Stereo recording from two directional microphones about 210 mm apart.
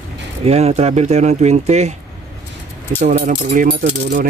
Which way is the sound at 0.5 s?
30° right (ahead or behind).